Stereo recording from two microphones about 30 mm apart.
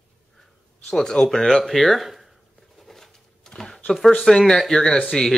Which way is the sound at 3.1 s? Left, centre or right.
Left.